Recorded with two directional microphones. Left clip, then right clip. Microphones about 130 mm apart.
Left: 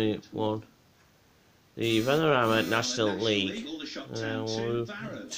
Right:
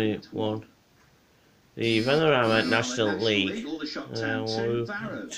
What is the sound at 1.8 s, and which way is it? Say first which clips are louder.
Speech: right 2 dB; 30° left (ahead or behind).